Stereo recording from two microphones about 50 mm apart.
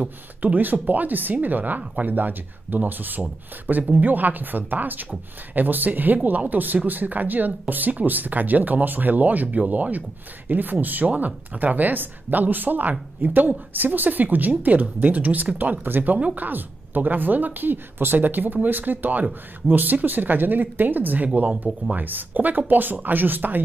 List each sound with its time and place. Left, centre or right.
0.4 s speech: right